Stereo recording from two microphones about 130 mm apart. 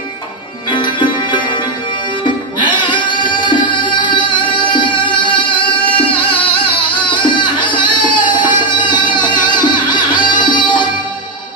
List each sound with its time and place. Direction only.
0.7 s music: 35° left (ahead or behind)